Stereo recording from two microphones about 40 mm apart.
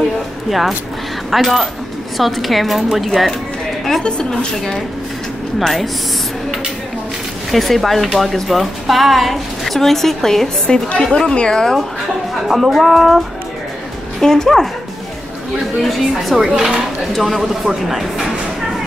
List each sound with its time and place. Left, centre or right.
0.5 s a woman's voice: centre
4.0 s a woman's voice: left
5.6 s a woman's voice: centre
7.5 s a woman's voice: centre
10.7 s a woman's voice: left
12.4 s a woman's voice: centre
14.2 s a woman's voice: centre
15.8 s a woman's voice: centre
16.5 s a man's voice: centre
17.1 s a woman's voice: centre